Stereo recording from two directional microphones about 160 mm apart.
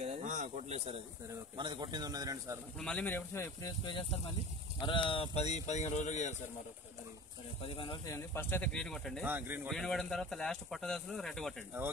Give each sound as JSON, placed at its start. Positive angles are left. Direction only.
{"t": 0.0, "sound": "speech", "side_deg": -45}
{"t": 2.8, "sound": "speech", "side_deg": 5}
{"t": 4.8, "sound": "speech", "side_deg": 30}
{"t": 7.6, "sound": "speech", "side_deg": 35}
{"t": 8.1, "sound": "speech", "side_deg": 15}
{"t": 9.2, "sound": "speech", "side_deg": -10}
{"t": 9.7, "sound": "speech", "side_deg": 0}